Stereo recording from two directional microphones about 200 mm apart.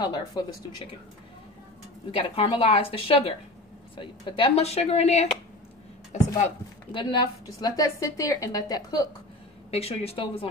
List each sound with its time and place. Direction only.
0.0 s a woman's voice: 20° left (ahead or behind)
2.0 s a woman's voice: 25° left (ahead or behind)
9.7 s a woman's voice: 30° left (ahead or behind)